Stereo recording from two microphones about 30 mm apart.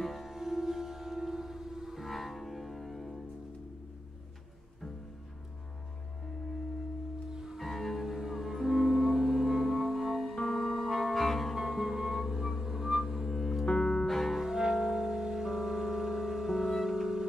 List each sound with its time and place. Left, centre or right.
0.0 s music: centre
2.0 s music: centre
7.6 s music: centre
8.1 s music: centre
11.1 s music: centre
11.5 s music: centre
12.3 s chirp tone: centre
13.3 s music: centre
13.7 s music: left
14.0 s music: centre
14.4 s music: centre